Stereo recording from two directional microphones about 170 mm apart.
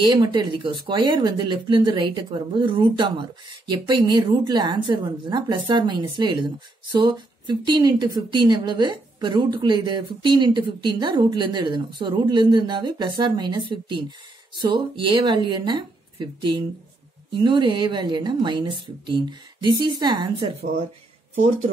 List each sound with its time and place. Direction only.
0.0 s speech: 25° right (ahead or behind)